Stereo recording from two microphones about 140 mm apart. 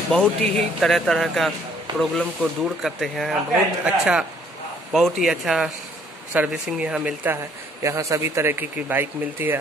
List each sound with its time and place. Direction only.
0.2 s speech: centre (ahead or behind)
7.8 s speech: 20° right (ahead or behind)